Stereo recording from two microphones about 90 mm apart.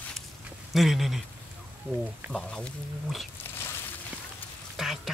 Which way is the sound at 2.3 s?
5° left (ahead or behind).